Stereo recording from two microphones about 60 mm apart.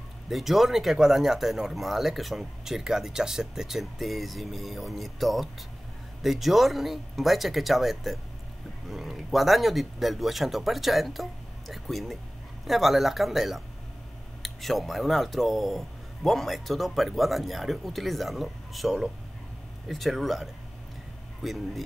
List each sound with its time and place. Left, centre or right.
0.3 s speech: centre